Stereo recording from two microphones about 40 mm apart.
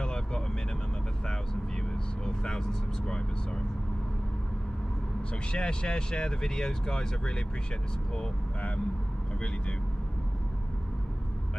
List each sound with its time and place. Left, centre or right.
0.0 s vehicle: centre
5.3 s speech: left
8.5 s speech: left